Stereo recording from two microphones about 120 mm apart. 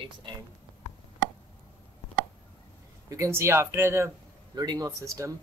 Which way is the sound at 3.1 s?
25° right (ahead or behind).